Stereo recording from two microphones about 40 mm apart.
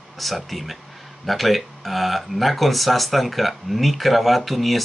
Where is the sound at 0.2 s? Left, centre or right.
Centre.